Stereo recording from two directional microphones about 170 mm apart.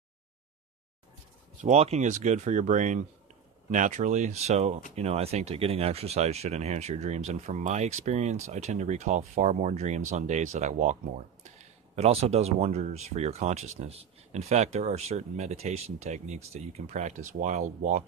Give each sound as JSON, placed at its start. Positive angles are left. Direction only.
{"t": 1.6, "sound": "speech", "side_deg": -40}